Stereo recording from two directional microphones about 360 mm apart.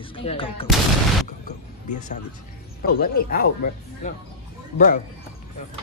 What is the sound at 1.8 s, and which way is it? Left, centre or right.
Speech, centre.